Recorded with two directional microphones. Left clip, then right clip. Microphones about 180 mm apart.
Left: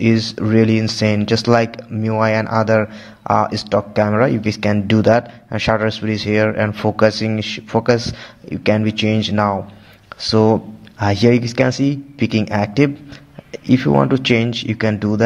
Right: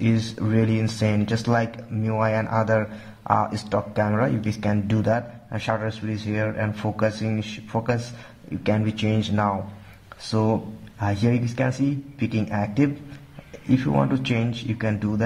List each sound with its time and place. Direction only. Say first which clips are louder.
0.0 s speech: left 9 dB; 30° left (ahead or behind)